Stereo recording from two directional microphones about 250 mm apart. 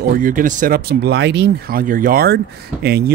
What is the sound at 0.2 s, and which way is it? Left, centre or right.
Speech, right.